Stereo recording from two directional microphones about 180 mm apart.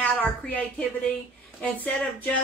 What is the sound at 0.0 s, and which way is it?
A woman's voice, 5° left (ahead or behind).